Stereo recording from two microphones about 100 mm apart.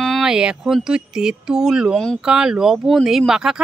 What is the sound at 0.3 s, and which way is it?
Speech, 5° right (ahead or behind).